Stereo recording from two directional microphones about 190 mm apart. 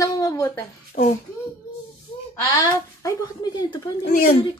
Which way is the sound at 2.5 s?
20° left (ahead or behind).